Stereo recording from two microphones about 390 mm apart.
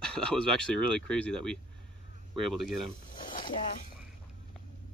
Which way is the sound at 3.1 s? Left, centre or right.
Left.